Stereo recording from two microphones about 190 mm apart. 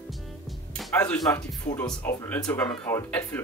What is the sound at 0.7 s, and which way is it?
Speech, 5° left (ahead or behind).